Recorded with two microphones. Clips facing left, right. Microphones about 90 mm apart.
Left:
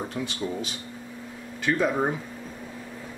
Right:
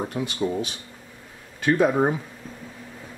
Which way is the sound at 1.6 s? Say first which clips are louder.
Right 4 dB; 20° right (ahead or behind).